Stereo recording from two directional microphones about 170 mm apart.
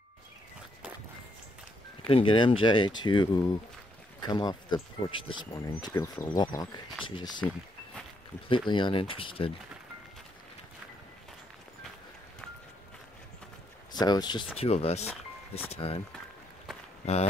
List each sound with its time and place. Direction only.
2.0 s speech: 30° left (ahead or behind)
8.6 s speech: 30° left (ahead or behind)
13.9 s speech: 25° left (ahead or behind)
14.7 s speech: 40° left (ahead or behind)
17.0 s speech: 40° left (ahead or behind)